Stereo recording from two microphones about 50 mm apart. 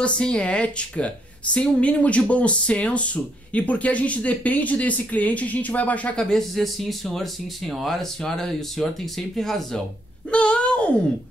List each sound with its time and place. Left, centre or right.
0.0 s speech: left
6.3 s speech: centre
10.3 s a sound: left